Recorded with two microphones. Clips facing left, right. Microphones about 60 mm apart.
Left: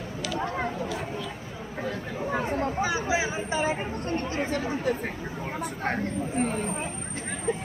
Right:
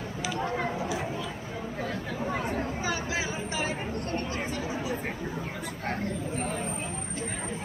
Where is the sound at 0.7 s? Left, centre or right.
Centre.